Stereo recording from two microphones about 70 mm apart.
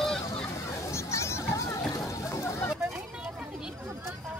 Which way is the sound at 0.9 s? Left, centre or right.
Left.